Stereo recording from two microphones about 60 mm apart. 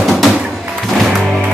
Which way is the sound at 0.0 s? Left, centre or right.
Centre.